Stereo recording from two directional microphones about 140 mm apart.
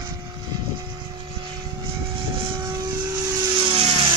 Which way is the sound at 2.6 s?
25° right (ahead or behind).